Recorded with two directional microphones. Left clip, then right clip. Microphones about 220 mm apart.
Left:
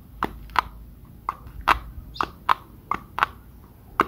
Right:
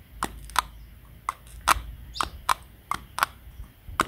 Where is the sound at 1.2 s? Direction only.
15° right (ahead or behind).